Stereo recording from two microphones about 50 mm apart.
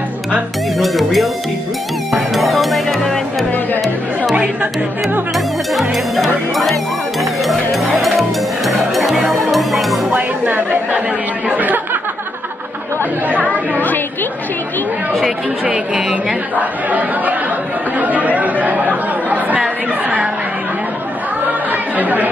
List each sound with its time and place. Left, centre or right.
0.7 s speech: centre
2.1 s music: centre
5.3 s speech: centre
10.1 s speech: right
13.5 s a woman's voice: left
15.6 s speech: right
16.5 s speech: right
21.9 s speech: right